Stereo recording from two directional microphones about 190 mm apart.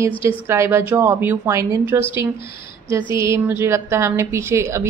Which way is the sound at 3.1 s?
15° right (ahead or behind).